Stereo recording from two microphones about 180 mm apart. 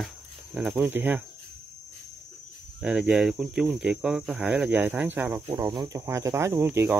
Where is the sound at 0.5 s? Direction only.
5° right (ahead or behind).